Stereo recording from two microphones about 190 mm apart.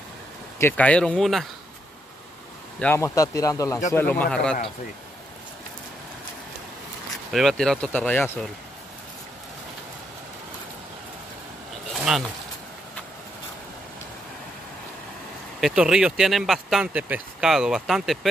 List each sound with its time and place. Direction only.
0.6 s speech: 10° left (ahead or behind)
2.8 s speech: 15° left (ahead or behind)
7.3 s speech: centre (ahead or behind)
11.9 s a sound: centre (ahead or behind)
15.6 s speech: 5° right (ahead or behind)